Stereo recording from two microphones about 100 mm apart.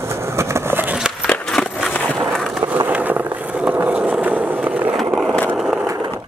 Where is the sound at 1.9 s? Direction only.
10° left (ahead or behind).